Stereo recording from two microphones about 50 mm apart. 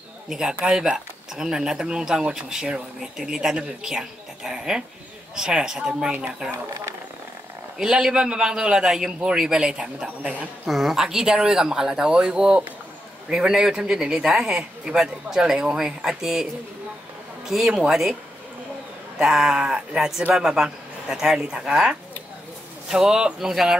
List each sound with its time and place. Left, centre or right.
0.3 s a man's voice: centre
3.5 s a woman's voice: right
3.9 s a woman's voice: centre
7.8 s a man's voice: centre
10.7 s speech: centre
11.0 s a man's voice: centre
17.6 s a man's voice: centre
19.1 s a man's voice: centre